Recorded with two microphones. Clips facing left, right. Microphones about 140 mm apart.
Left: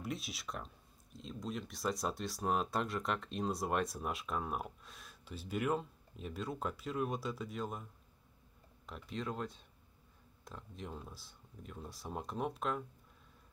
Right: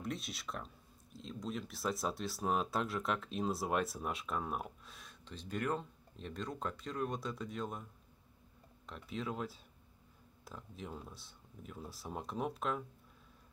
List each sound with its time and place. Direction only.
0.0 s speech: centre (ahead or behind)